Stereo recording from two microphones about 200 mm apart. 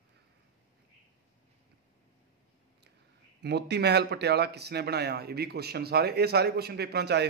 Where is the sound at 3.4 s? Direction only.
55° right (ahead or behind).